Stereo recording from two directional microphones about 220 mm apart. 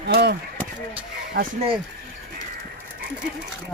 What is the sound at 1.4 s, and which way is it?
Speech, 55° right (ahead or behind).